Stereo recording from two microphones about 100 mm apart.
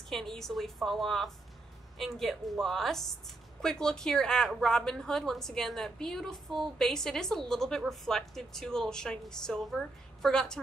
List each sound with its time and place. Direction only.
0.1 s a woman's voice: 5° left (ahead or behind)